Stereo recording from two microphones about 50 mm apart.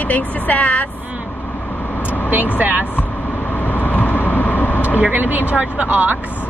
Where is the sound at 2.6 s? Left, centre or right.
Right.